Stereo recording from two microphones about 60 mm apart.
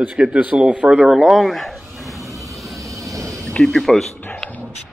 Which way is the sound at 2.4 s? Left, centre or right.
Centre.